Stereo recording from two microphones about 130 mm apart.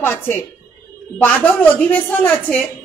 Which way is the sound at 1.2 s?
15° left (ahead or behind).